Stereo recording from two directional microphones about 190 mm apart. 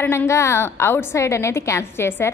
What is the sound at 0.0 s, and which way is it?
A woman's voice, 10° left (ahead or behind).